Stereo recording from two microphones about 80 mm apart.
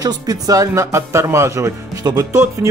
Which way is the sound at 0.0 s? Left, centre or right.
Right.